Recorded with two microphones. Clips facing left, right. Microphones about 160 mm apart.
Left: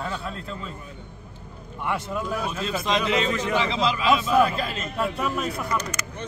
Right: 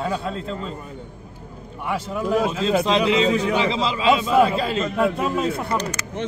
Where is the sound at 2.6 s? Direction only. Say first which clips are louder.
Right 4 dB; 30° right (ahead or behind).